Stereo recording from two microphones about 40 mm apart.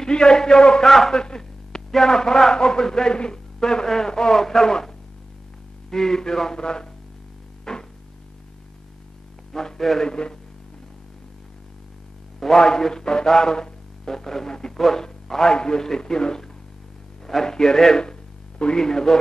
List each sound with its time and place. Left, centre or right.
0.0 s a man's voice: centre
7.7 s music: centre
9.5 s a man's voice: centre
10.0 s speech: left
12.4 s a man's voice: centre